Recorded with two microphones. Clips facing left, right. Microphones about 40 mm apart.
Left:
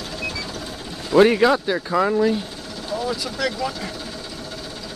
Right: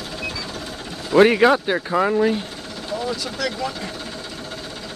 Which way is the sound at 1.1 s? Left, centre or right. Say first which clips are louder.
Right 1 dB; right.